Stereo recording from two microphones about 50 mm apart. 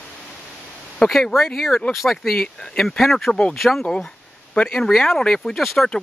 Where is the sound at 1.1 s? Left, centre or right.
Centre.